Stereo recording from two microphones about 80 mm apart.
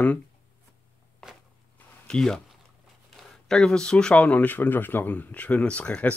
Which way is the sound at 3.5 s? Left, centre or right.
Centre.